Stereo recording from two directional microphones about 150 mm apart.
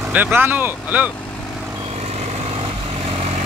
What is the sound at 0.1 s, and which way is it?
Speech, 15° right (ahead or behind).